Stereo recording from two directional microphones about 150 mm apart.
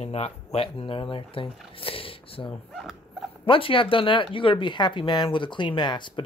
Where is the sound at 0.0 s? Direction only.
45° left (ahead or behind).